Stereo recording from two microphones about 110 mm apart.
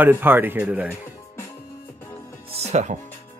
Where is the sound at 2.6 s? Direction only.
90° right.